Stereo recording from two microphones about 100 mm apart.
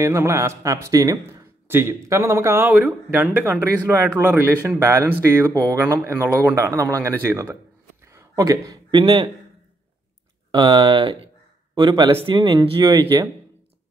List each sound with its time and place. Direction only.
0.0 s speech: 30° right (ahead or behind)
1.7 s speech: 25° right (ahead or behind)
8.1 s a sound: 30° right (ahead or behind)
9.0 s speech: 50° right (ahead or behind)
10.5 s speech: 45° right (ahead or behind)
12.2 s speech: 60° right (ahead or behind)